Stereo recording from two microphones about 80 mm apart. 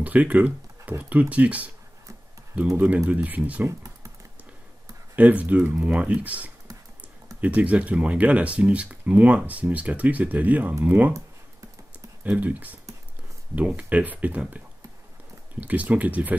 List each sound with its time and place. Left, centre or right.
0.0 s computer keyboard: centre
0.9 s speech: right
3.1 s speech: centre
3.6 s computer keyboard: right
5.1 s speech: centre
12.2 s speech: centre
15.6 s speech: centre